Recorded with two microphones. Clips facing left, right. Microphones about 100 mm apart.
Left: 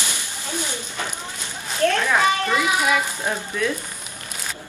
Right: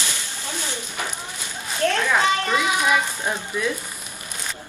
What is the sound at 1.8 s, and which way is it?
Speech, 40° left (ahead or behind).